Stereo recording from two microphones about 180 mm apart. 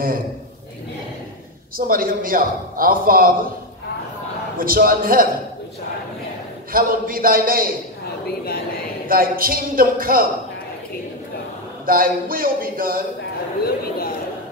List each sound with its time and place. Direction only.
1.8 s a man's voice: 55° right (ahead or behind)
4.6 s a man's voice: 55° right (ahead or behind)
6.7 s a man's voice: 55° right (ahead or behind)
8.3 s speech: 60° left (ahead or behind)
9.1 s a man's voice: 55° right (ahead or behind)
11.8 s a man's voice: 55° right (ahead or behind)